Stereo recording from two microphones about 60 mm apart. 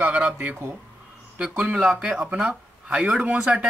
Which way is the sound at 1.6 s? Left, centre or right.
Centre.